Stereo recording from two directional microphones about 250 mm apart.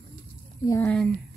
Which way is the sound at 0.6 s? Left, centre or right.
Centre.